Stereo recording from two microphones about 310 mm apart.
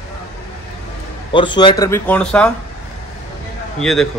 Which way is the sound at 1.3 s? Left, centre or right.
Centre.